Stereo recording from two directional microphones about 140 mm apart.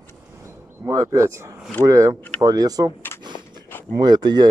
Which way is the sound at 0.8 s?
20° right (ahead or behind).